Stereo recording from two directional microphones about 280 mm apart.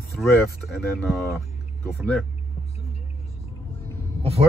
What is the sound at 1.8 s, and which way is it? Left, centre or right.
Speech, centre.